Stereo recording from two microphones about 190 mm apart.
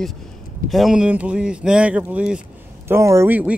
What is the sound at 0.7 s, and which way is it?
Speech, centre (ahead or behind).